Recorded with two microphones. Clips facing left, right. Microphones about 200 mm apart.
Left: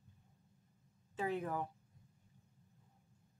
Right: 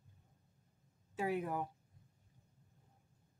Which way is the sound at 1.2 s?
10° right (ahead or behind).